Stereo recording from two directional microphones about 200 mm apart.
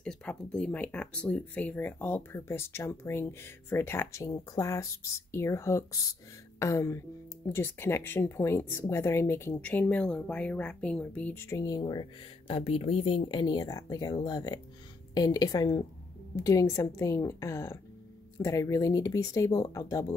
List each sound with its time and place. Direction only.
0.0 s a woman's voice: 5° left (ahead or behind)